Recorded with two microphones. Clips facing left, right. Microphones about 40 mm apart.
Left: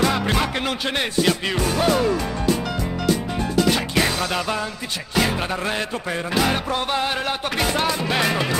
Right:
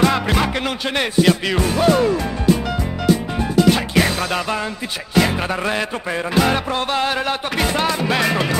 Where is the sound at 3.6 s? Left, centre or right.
Centre.